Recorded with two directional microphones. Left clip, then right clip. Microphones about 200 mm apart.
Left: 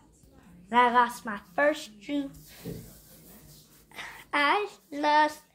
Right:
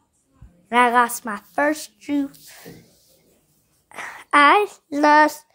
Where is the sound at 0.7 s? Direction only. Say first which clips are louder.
Right 6 dB; 55° right (ahead or behind).